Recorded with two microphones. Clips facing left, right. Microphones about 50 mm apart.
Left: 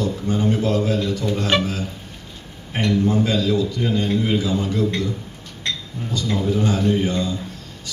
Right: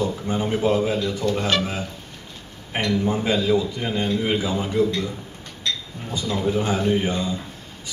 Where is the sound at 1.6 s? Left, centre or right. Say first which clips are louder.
Left 2 dB; centre.